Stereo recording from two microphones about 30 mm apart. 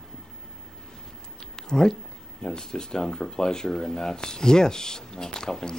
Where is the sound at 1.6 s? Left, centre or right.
Left.